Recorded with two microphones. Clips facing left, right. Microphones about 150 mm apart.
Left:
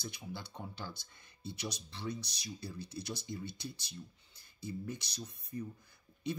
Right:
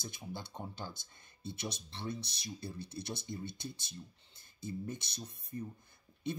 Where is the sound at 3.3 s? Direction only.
40° right (ahead or behind).